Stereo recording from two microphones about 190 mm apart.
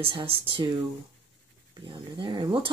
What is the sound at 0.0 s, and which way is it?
Speech, 25° right (ahead or behind).